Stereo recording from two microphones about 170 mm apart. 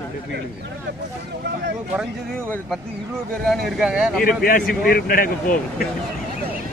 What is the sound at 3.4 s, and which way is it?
Speech, centre (ahead or behind).